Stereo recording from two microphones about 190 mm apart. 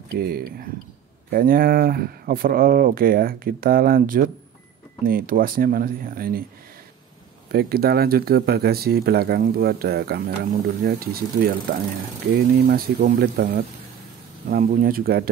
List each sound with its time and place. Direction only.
0.1 s speech: 55° right (ahead or behind)
7.5 s speech: 55° right (ahead or behind)
12.6 s speech: 55° right (ahead or behind)